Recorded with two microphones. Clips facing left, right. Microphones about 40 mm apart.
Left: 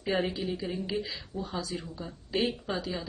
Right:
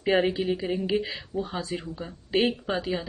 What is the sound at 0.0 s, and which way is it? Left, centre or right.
A woman's voice, right.